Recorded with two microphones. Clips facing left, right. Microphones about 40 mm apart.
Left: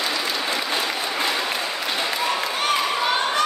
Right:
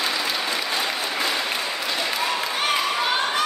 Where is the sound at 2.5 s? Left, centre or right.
Centre.